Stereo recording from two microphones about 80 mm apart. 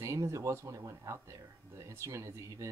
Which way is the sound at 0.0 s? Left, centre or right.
Right.